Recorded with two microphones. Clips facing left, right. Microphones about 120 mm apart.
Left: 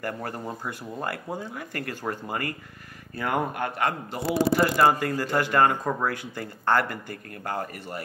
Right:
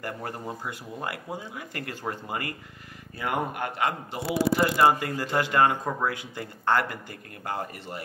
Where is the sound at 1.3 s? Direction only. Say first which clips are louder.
Left 3 dB; 10° right (ahead or behind).